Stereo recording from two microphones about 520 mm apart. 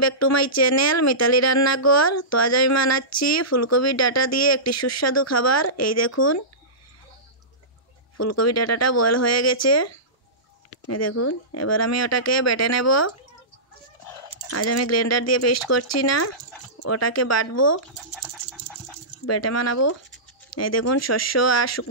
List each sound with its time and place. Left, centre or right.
0.0 s speech: left
8.2 s speech: left
14.5 s speech: left
18.5 s a sound: centre
19.2 s speech: left